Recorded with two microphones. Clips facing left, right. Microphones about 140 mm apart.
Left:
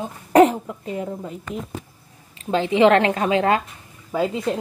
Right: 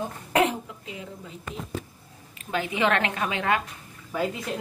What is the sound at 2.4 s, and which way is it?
Speech, 30° left (ahead or behind).